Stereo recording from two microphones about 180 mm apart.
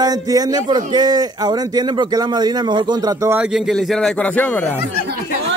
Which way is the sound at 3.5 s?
Centre (ahead or behind).